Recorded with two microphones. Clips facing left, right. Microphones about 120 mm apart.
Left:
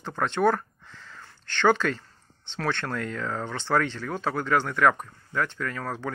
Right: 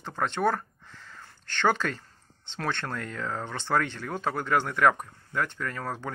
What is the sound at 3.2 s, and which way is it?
Speech, 5° right (ahead or behind).